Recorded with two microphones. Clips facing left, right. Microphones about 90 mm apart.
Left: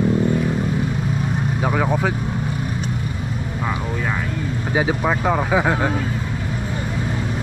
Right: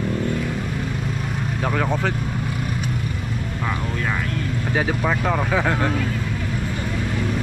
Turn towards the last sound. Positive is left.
turn(degrees=15)  # may be behind; listen again after turning